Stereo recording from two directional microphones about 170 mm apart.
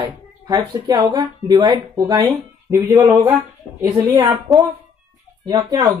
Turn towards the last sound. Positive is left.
turn(degrees=-25)  # may be behind; listen again after turning